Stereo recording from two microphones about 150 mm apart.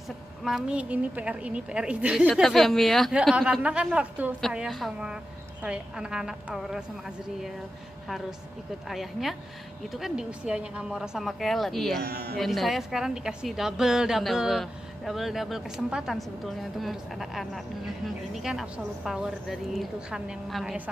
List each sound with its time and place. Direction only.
0.4 s a woman's voice: 5° right (ahead or behind)
8.8 s a woman's voice: centre (ahead or behind)
12.0 s a woman's voice: 90° right
12.4 s a woman's voice: centre (ahead or behind)